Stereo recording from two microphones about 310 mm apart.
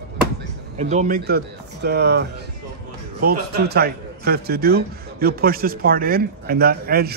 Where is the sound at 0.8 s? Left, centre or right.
Right.